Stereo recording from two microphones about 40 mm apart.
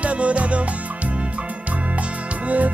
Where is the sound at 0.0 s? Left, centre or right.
Right.